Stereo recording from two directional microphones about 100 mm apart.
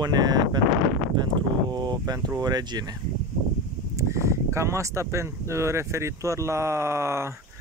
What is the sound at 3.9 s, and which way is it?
Speech, 30° right (ahead or behind).